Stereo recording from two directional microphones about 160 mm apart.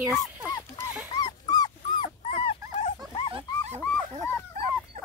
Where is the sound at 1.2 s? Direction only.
25° left (ahead or behind).